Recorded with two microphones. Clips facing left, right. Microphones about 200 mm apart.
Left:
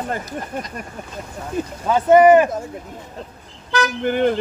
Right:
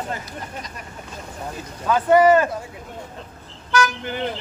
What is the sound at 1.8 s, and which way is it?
Speech, 25° left (ahead or behind).